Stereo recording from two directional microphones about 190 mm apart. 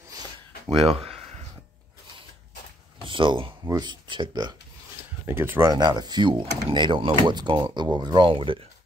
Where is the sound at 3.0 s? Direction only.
25° right (ahead or behind).